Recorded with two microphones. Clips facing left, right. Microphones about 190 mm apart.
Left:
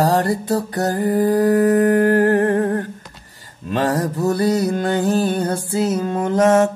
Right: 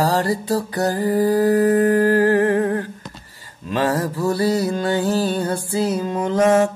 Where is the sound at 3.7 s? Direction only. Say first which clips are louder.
Left 1 dB; 40° left (ahead or behind).